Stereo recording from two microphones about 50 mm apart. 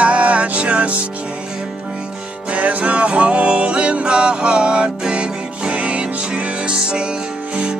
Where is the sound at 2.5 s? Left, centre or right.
Right.